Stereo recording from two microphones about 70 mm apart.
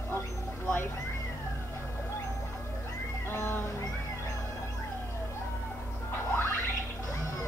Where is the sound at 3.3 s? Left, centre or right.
Left.